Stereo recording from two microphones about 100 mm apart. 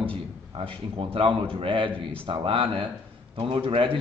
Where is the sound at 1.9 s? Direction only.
15° left (ahead or behind).